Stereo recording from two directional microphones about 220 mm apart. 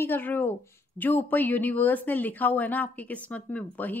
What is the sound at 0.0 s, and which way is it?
A woman's voice, 10° left (ahead or behind).